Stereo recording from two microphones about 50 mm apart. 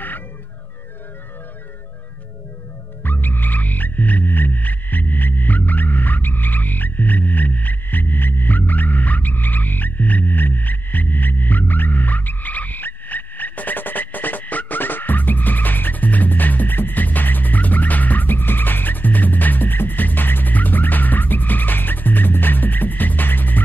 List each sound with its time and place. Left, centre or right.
3.0 s frog: left